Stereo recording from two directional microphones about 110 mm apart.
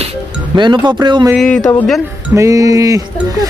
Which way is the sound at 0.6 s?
45° right (ahead or behind).